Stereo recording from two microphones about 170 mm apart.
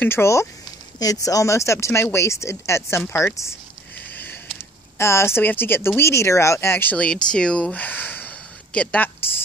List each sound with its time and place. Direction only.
0.0 s speech: 15° left (ahead or behind)